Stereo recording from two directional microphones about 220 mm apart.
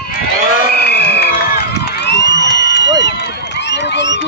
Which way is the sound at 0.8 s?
50° left (ahead or behind).